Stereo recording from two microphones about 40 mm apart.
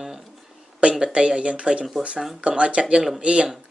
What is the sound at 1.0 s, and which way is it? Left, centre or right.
Speech, right.